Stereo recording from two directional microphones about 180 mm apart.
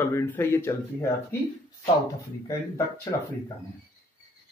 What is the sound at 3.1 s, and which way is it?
Speech, 25° left (ahead or behind).